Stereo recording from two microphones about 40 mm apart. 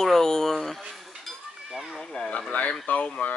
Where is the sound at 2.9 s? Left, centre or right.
Left.